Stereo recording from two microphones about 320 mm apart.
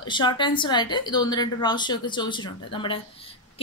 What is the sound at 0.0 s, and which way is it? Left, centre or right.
A woman's voice, centre.